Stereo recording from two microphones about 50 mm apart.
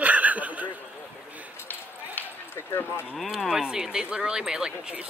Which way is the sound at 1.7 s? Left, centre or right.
Left.